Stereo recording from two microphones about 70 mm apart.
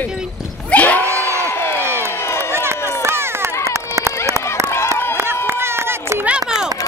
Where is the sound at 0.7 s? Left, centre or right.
Left.